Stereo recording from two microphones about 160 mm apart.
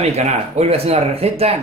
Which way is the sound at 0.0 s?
45° right (ahead or behind).